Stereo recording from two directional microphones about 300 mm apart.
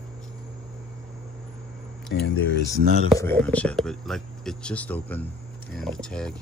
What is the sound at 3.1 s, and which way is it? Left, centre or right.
Speech, centre.